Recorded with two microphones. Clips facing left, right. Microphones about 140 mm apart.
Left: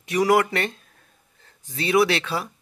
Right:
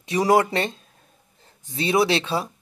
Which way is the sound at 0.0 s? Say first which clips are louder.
Right 1 dB; 25° right (ahead or behind).